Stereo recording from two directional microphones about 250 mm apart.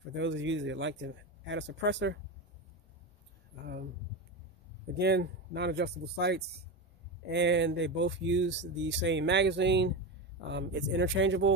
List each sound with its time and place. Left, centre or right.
0.2 s speech: right
4.9 s speech: right